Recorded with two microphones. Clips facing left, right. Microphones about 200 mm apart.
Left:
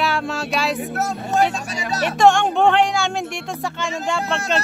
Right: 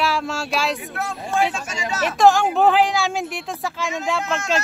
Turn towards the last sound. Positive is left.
turn(degrees=35)  # may be behind; listen again after turning